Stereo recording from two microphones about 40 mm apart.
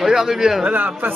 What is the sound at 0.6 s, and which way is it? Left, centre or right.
Speech, right.